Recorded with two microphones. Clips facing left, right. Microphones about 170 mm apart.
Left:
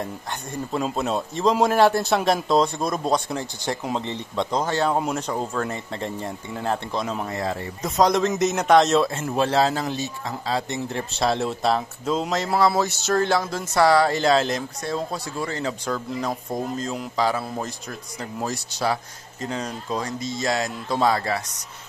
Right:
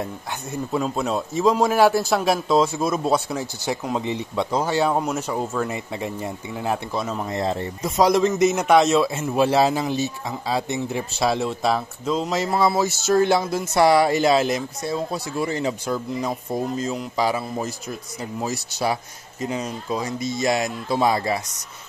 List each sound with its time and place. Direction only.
0.0 s a man's voice: 5° right (ahead or behind)
7.2 s a man's voice: 25° right (ahead or behind)
7.8 s a man's voice: 5° right (ahead or behind)